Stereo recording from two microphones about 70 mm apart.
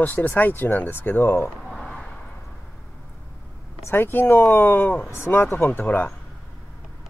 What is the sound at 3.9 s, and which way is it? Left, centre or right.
Speech, left.